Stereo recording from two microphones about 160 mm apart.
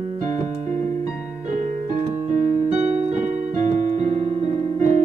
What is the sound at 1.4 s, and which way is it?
Keyboard, 50° right (ahead or behind).